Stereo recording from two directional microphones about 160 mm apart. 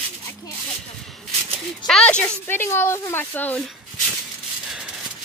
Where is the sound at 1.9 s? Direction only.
5° left (ahead or behind).